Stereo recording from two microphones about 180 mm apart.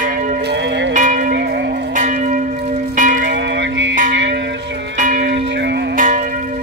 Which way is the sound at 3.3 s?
75° right (ahead or behind).